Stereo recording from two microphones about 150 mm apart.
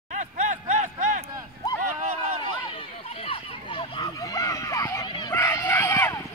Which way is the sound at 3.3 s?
35° left (ahead or behind).